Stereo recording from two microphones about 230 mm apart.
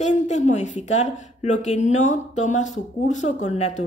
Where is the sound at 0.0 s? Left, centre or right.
Left.